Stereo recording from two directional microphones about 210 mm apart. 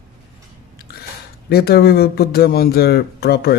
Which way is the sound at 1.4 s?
50° left (ahead or behind).